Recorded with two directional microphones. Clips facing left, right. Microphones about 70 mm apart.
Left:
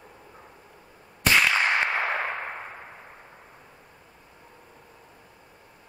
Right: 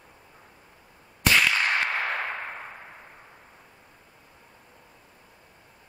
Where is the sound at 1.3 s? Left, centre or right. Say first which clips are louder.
Left 2 dB; left.